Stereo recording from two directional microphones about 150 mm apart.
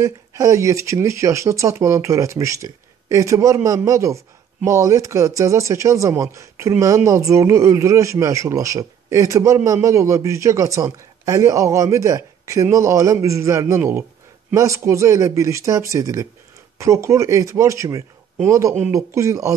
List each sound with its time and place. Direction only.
0.0 s speech: 20° right (ahead or behind)